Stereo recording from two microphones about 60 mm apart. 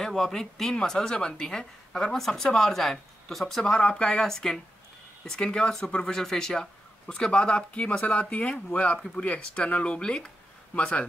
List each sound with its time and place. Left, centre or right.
0.0 s a woman's voice: centre